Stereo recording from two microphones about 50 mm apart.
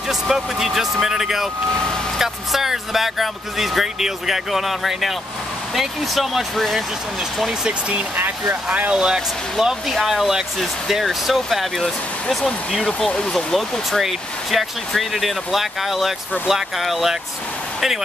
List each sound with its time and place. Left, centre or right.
0.1 s speech: centre
8.9 s speech: centre
13.1 s speech: centre
13.5 s speech: centre